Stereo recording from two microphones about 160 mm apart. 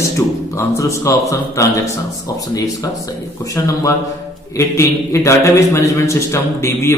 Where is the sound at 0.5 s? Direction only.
20° left (ahead or behind).